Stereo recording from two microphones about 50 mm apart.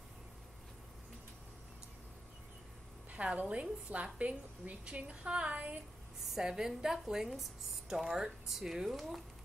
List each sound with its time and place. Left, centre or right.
3.1 s a woman's voice: right
6.3 s a woman's voice: centre